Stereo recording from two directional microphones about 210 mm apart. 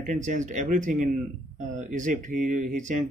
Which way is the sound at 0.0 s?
35° right (ahead or behind).